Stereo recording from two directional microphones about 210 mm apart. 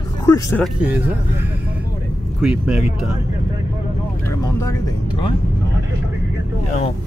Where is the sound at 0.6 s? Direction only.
5° right (ahead or behind).